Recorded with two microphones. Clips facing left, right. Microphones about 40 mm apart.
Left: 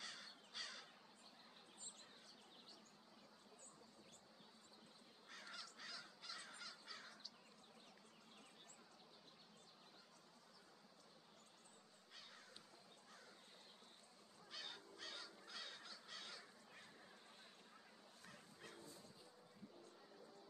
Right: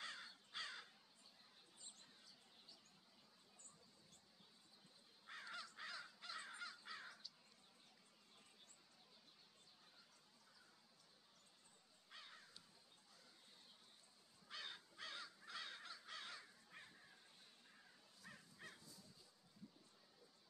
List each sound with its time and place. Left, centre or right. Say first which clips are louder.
0.0 s crow: right 2 dB; right
5.2 s crow: right 3 dB; centre
12.1 s crow: right 2 dB; centre
14.5 s crow: right 1 dB; centre
18.7 s dog: left 3 dB; left